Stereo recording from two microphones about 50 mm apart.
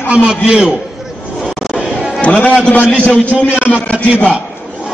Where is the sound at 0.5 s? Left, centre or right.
Centre.